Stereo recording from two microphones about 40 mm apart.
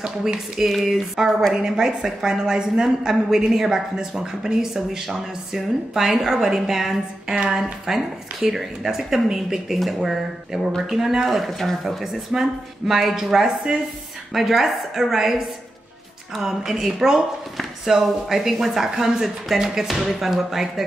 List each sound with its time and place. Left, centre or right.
0.0 s a woman's voice: centre
0.7 s a woman's voice: centre